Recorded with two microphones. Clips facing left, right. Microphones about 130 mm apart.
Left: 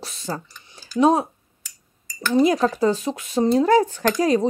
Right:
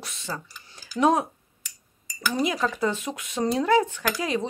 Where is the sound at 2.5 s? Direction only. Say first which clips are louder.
Left 6 dB; 35° left (ahead or behind).